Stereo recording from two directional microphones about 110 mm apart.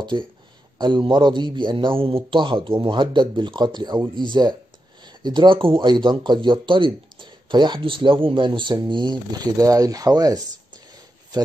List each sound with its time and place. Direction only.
0.1 s speech: 45° right (ahead or behind)